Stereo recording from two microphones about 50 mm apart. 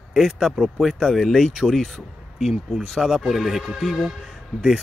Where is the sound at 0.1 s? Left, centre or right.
Centre.